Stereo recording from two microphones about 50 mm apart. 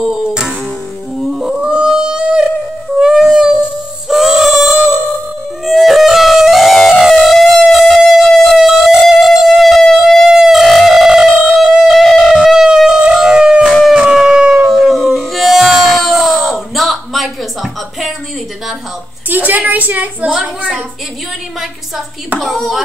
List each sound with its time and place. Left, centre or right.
0.1 s music: centre
1.1 s a sound: centre
3.0 s music: centre
4.1 s singing: centre
5.7 s music: centre
8.6 s music: centre
10.0 s music: centre
13.8 s howl: centre
14.7 s howl: centre
15.1 s a sound: centre
19.2 s a sound: right
22.4 s a sound: centre